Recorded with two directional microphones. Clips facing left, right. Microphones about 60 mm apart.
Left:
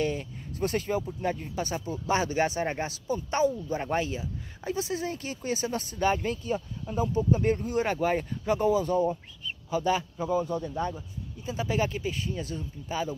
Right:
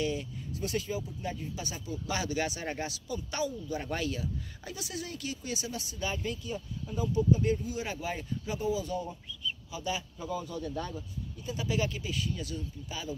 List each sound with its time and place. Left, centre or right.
0.0 s speech: left